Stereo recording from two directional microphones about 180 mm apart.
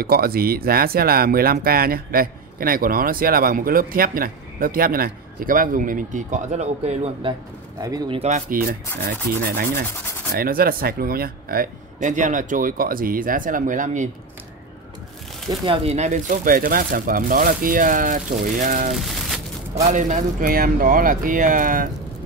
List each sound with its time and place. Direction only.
0.0 s speech: 55° right (ahead or behind); by 7.3 s 35° right (ahead or behind)
7.8 s speech: 20° right (ahead or behind)
8.2 s speech: 40° right (ahead or behind)
9.0 s rub: 55° right (ahead or behind)
10.3 s speech: 55° right (ahead or behind)
15.6 s speech: 30° right (ahead or behind)
18.9 s a sound: centre (ahead or behind)
19.7 s speech: 40° right (ahead or behind)